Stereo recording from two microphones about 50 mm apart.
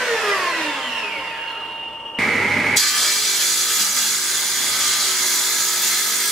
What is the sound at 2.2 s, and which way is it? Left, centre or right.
Tools, centre.